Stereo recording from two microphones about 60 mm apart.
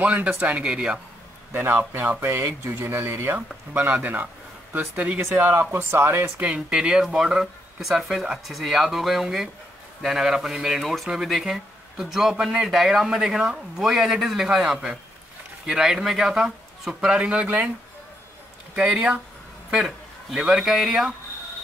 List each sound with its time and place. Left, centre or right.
0.0 s speech: right
1.5 s speech: right
2.2 s speech: right
2.7 s speech: right
5.3 s speech: right
6.4 s speech: centre
17.3 s speech: right
19.7 s a man's voice: centre